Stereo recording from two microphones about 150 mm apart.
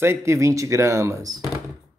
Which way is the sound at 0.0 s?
20° right (ahead or behind).